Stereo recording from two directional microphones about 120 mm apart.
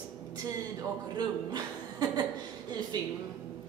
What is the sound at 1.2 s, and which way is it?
A woman's voice, 35° right (ahead or behind).